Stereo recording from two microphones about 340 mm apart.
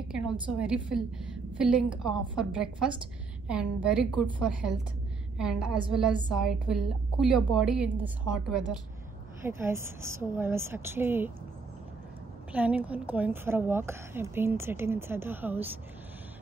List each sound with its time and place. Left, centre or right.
0.3 s a woman's voice: centre
12.5 s a woman's voice: centre